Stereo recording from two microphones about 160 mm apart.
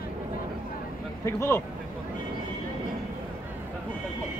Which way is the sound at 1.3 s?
15° left (ahead or behind).